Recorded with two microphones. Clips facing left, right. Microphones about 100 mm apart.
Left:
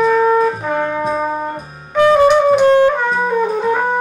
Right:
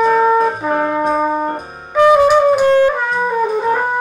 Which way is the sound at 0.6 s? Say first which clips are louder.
Right 2 dB; 5° right (ahead or behind).